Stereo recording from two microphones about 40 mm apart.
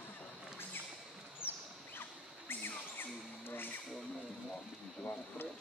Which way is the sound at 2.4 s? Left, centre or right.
Left.